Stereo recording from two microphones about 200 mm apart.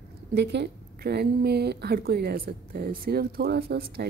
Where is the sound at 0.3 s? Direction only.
60° right (ahead or behind).